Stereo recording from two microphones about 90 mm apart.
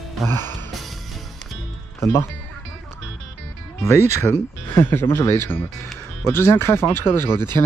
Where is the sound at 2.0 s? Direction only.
30° left (ahead or behind).